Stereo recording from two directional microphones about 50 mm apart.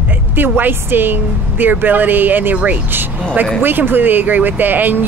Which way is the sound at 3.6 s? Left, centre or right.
Right.